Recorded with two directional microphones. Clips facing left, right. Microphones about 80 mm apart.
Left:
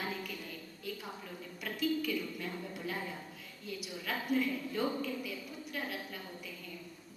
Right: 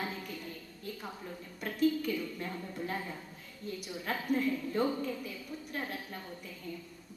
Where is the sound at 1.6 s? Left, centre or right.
Right.